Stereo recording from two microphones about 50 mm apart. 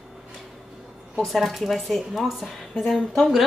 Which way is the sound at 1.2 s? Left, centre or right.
Centre.